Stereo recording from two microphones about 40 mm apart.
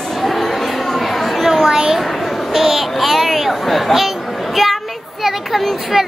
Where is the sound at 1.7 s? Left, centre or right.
Centre.